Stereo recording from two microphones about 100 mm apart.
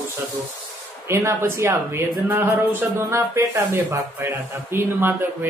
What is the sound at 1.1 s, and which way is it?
Speech, 25° right (ahead or behind).